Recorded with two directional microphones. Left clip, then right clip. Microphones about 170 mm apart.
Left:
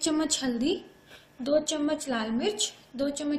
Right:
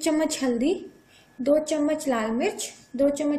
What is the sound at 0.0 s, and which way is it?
A woman's voice, 50° right (ahead or behind).